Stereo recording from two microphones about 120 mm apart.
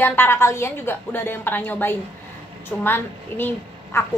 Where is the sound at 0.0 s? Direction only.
20° left (ahead or behind).